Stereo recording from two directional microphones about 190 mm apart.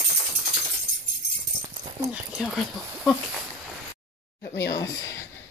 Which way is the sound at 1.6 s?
25° right (ahead or behind).